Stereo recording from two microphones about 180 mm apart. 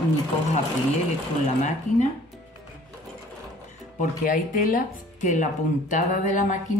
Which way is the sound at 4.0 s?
50° left (ahead or behind).